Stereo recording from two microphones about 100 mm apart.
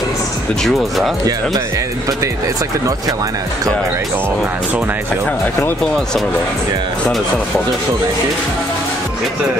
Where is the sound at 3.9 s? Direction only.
20° right (ahead or behind).